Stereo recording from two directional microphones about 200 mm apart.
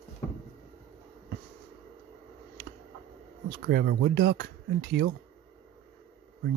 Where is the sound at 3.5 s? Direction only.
55° right (ahead or behind).